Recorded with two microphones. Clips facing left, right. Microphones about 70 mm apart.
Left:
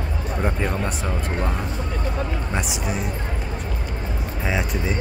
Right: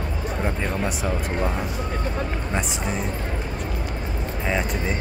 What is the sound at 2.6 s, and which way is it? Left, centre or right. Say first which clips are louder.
Speech: even; centre.